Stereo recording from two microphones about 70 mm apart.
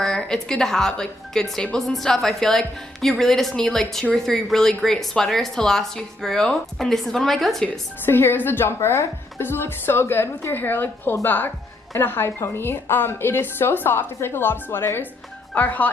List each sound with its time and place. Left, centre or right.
0.0 s speech: centre
8.0 s a woman's voice: left
15.5 s speech: left